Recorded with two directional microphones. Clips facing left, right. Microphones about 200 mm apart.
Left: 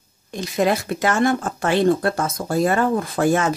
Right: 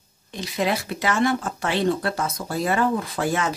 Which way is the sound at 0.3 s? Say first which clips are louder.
Left 5 dB; 45° left (ahead or behind).